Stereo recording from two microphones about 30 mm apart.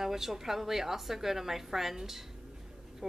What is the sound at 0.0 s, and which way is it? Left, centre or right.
Speech, centre.